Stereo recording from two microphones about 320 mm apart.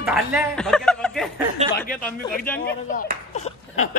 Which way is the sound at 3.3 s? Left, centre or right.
Left.